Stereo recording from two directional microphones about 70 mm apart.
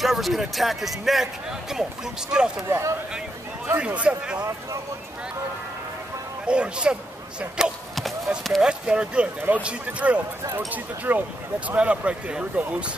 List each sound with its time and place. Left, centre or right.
0.0 s speech: centre
2.7 s speech: right
3.8 s speech: centre
6.4 s speech: centre